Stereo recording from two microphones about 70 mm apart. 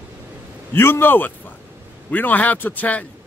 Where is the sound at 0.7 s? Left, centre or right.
Left.